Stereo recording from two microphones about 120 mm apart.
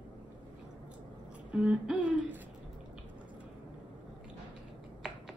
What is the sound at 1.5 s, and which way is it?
Speech, 10° right (ahead or behind).